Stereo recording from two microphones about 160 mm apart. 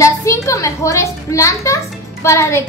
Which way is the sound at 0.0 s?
20° left (ahead or behind).